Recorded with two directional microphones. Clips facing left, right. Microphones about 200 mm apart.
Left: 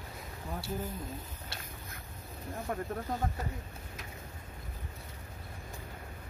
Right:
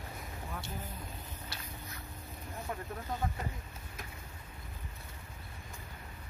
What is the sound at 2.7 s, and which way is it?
Speech, 50° left (ahead or behind).